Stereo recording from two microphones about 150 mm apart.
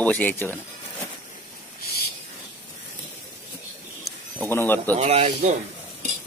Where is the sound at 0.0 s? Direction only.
10° left (ahead or behind).